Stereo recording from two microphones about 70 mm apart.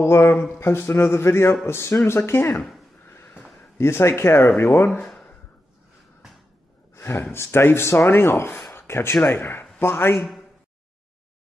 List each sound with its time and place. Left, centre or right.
0.0 s speech: left
2.5 s speech: centre
3.1 s a sound: left
3.7 s speech: left
6.9 s speech: left
8.7 s a sound: left
9.3 s speech: left
10.1 s speech: centre